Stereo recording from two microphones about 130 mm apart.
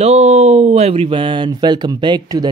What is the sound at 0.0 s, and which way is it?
Speech, 60° right (ahead or behind).